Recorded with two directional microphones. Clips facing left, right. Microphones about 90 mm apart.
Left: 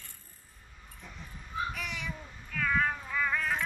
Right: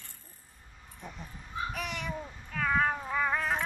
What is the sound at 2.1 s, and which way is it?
Cat, 30° right (ahead or behind).